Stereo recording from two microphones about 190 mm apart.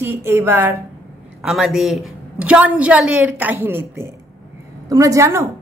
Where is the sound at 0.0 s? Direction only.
10° right (ahead or behind).